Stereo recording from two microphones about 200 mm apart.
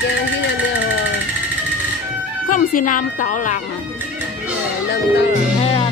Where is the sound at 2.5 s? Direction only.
40° left (ahead or behind).